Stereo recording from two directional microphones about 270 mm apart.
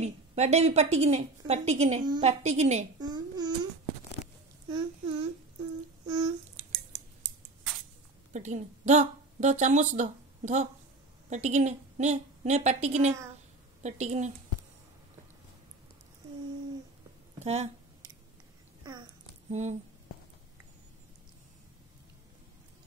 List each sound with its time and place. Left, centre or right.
0.0 s a woman's voice: right
4.6 s child singing: centre
6.0 s a sound: centre
8.3 s a woman's voice: right
17.4 s speech: right
19.5 s a woman's voice: right